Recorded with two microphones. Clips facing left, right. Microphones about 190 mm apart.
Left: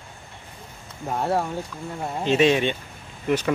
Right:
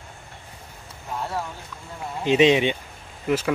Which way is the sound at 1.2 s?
60° left (ahead or behind).